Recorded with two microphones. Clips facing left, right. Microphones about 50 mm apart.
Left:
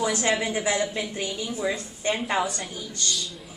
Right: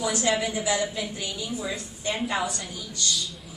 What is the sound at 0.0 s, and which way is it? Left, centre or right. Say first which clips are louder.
A woman's voice: left 1 dB; left.